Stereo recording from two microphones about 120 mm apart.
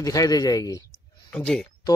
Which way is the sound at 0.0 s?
30° left (ahead or behind).